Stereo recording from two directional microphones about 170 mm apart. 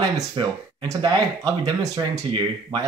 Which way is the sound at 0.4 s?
25° right (ahead or behind).